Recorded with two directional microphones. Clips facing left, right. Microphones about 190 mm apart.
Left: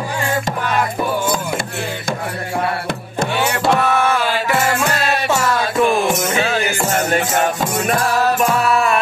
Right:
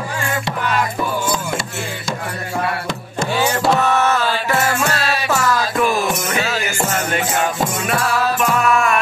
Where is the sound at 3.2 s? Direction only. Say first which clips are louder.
Even; 60° left (ahead or behind).